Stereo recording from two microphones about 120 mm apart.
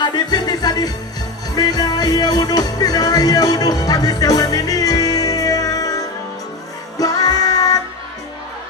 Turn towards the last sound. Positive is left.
turn(degrees=30)  # may be behind; listen again after turning